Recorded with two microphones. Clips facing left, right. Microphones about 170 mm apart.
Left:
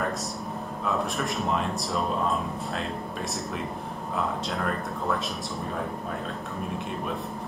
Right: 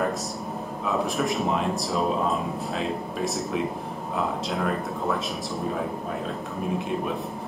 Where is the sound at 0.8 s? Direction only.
Centre (ahead or behind).